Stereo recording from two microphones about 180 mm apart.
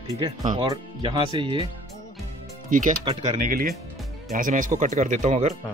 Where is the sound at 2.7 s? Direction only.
45° right (ahead or behind).